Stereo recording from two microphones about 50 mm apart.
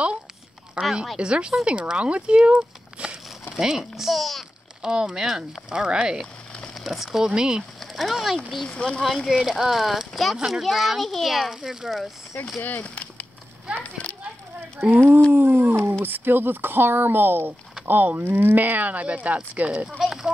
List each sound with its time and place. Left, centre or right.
0.8 s speech: right
3.4 s a child's voice: centre
4.8 s speech: centre
6.7 s speech: centre
7.8 s a sound: centre
8.6 s speech: left
9.3 s a child's voice: centre
12.6 s a sound: left
14.8 s speech: right
20.0 s a sound: centre